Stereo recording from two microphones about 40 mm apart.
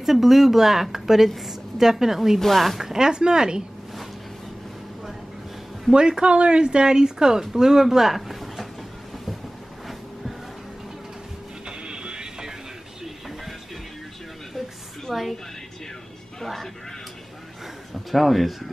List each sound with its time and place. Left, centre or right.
0.0 s speech: centre
2.4 s speech: centre
2.8 s speech: centre
5.9 s speech: right; by 8.6 s centre
11.6 s music: right
15.0 s a woman's voice: centre
17.9 s speech: centre